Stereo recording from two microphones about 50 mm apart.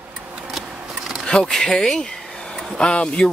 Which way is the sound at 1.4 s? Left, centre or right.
Centre.